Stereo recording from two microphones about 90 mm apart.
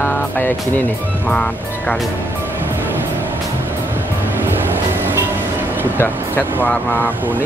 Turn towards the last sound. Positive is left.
turn(degrees=20)  # may be behind; listen again after turning